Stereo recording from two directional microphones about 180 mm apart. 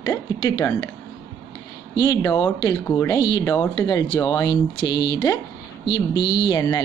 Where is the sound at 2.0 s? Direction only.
20° left (ahead or behind).